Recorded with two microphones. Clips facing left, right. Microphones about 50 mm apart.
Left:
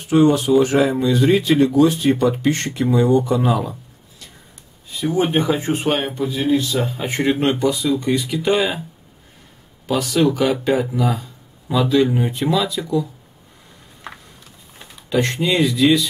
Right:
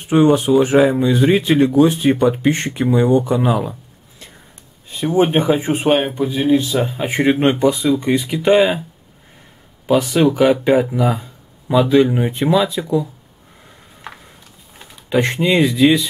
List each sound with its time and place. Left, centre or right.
0.0 s speech: right
4.8 s a sound: right
5.2 s speech: right
9.8 s speech: right
15.0 s speech: right